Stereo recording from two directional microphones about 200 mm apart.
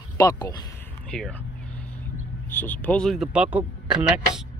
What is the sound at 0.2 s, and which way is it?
Speech, 20° left (ahead or behind).